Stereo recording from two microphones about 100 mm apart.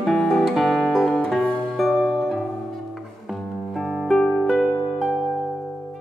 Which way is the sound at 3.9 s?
5° left (ahead or behind).